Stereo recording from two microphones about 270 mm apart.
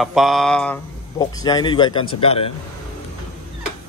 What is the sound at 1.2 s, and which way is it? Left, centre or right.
Speech, centre.